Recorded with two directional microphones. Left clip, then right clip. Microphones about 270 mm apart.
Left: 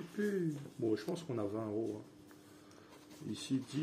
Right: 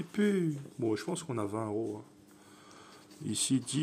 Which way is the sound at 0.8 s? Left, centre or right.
Right.